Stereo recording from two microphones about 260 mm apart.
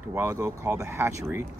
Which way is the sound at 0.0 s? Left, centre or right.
Centre.